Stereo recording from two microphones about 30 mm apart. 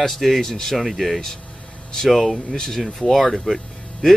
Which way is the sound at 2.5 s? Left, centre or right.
Left.